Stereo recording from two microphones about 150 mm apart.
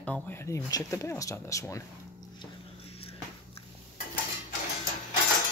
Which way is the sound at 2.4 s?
40° left (ahead or behind).